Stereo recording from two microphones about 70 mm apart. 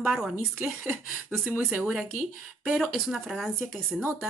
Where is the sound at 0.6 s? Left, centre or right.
Centre.